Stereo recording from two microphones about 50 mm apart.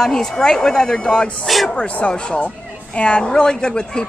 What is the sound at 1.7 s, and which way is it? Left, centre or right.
Speech, left.